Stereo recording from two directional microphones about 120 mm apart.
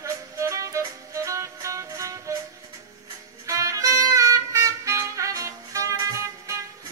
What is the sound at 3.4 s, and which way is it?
Music, 25° right (ahead or behind).